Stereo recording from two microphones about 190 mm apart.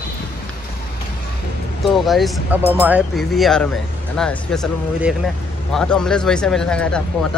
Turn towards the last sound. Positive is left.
turn(degrees=5)  # may be behind; listen again after turning